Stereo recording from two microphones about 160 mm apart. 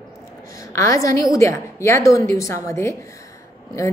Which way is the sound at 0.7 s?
20° left (ahead or behind).